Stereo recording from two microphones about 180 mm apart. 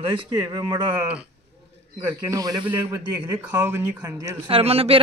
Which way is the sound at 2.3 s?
20° right (ahead or behind).